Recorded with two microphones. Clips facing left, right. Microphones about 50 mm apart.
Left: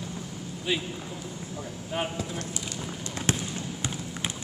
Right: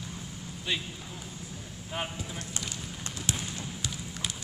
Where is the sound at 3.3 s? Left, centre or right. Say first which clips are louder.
Left 6 dB; left.